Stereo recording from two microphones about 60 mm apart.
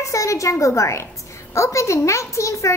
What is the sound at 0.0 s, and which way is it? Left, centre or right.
A woman's voice, left.